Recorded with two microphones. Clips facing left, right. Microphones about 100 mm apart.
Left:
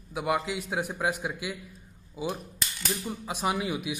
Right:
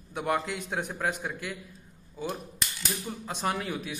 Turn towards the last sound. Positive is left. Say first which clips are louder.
# left 2 dB
turn(degrees=10)  # may be behind; listen again after turning